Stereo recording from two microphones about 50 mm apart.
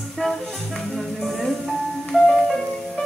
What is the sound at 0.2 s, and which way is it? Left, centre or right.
Music, centre.